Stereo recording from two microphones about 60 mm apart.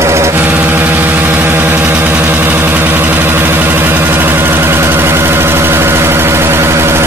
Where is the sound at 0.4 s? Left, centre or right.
Right.